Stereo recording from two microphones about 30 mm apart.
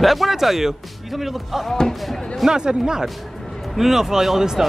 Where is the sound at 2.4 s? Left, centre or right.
Right.